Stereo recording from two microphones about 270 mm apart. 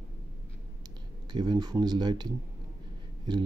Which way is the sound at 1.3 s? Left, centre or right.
Centre.